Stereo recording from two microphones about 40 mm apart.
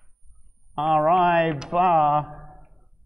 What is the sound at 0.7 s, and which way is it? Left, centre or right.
Speech, centre.